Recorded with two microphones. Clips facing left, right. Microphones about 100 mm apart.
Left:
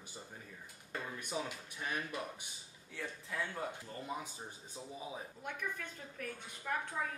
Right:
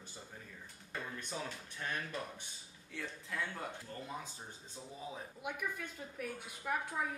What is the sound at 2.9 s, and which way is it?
Speech, centre (ahead or behind).